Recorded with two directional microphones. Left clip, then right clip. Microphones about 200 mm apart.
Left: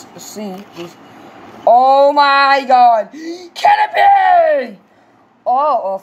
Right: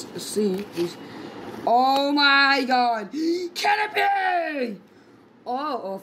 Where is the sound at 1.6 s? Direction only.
5° left (ahead or behind).